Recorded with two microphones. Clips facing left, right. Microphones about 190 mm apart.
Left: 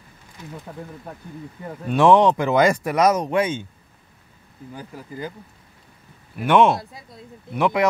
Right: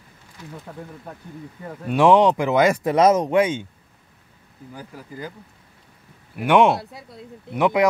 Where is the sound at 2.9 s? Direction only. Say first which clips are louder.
Right 2 dB; 25° right (ahead or behind).